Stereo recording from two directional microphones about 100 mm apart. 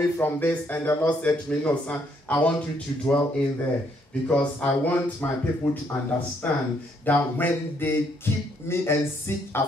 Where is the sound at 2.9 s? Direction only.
40° left (ahead or behind).